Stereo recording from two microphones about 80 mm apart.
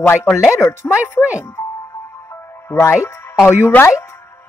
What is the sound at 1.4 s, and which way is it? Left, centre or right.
Music, left.